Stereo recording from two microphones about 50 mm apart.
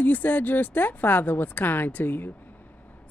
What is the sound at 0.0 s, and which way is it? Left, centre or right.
A man's voice, left.